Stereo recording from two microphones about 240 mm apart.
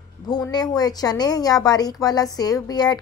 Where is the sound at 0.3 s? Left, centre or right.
Centre.